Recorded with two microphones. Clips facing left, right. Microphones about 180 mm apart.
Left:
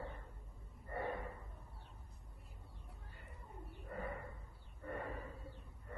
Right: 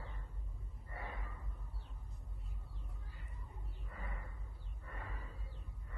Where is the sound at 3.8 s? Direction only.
65° left (ahead or behind).